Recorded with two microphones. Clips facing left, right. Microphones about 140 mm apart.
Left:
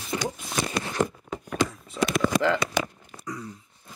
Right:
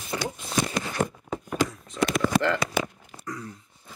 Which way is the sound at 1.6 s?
Centre (ahead or behind).